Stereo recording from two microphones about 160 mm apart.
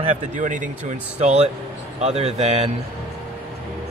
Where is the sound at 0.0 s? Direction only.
50° right (ahead or behind).